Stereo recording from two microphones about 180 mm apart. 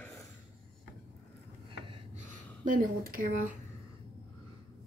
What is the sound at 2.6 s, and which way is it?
Speech, 50° right (ahead or behind).